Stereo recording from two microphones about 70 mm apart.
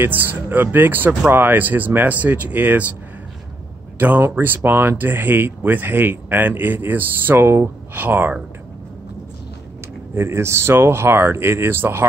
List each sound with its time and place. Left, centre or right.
0.0 s speech: right
4.2 s speech: right
10.1 s speech: right